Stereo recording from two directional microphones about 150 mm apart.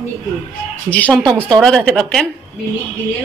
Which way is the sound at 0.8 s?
10° left (ahead or behind).